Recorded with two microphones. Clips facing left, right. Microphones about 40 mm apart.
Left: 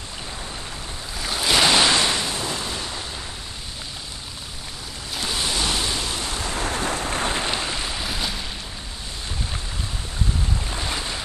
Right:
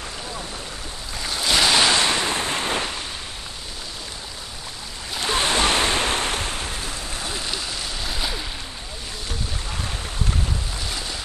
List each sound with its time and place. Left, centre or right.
1.2 s waves: centre
2.0 s waves: centre
2.2 s waves: right
5.2 s waves: right
6.5 s boat: left; by 8.3 s centre
10.7 s boat: left